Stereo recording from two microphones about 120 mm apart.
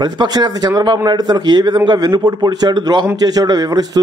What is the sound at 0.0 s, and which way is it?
Speech, 35° right (ahead or behind).